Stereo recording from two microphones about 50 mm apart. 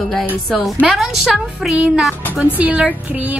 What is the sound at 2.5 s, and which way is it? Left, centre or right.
Speech, right.